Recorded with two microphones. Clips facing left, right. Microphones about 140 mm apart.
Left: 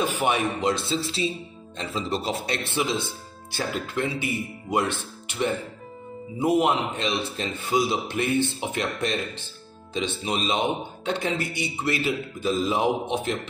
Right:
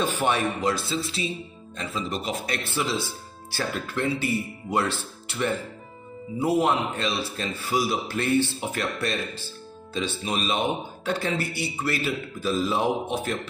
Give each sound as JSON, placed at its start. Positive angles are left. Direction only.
{"t": 0.0, "sound": "speech", "side_deg": 15}
{"t": 2.7, "sound": "speech", "side_deg": 15}